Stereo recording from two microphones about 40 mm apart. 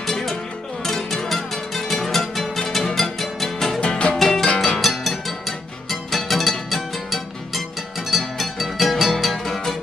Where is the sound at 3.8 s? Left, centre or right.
Left.